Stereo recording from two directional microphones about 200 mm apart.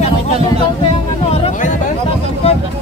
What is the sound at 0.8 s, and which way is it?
Music, 30° left (ahead or behind).